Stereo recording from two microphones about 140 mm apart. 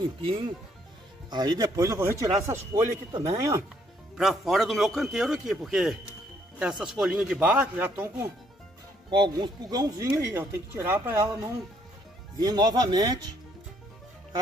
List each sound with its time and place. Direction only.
0.0 s speech: 35° right (ahead or behind)
4.2 s a man's voice: centre (ahead or behind)
9.1 s speech: 35° right (ahead or behind)